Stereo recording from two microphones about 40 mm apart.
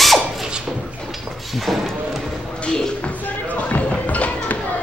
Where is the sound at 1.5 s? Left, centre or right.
Centre.